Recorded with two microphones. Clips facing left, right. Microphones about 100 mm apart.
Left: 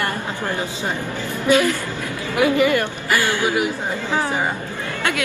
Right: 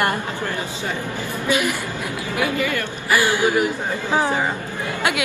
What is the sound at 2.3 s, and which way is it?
Speech, 20° left (ahead or behind).